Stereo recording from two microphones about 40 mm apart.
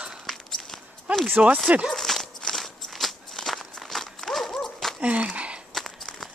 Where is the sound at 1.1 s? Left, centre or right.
Right.